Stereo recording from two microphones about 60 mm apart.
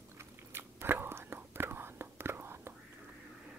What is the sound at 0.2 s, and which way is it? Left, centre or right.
Whispering, right.